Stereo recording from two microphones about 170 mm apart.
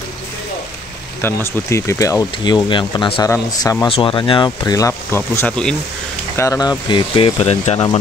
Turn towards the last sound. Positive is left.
turn(degrees=35)  # may be behind; listen again after turning